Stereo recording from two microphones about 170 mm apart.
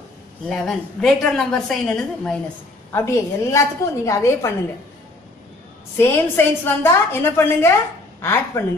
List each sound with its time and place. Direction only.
0.5 s a woman's voice: 5° left (ahead or behind)
2.9 s a woman's voice: 15° left (ahead or behind)
5.9 s a woman's voice: 15° left (ahead or behind)